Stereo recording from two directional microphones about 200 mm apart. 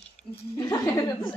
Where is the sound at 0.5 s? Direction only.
20° left (ahead or behind).